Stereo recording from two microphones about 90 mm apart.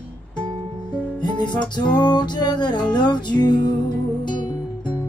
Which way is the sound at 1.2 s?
55° left (ahead or behind).